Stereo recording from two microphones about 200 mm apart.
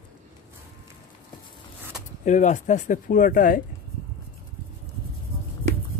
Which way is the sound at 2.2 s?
40° left (ahead or behind).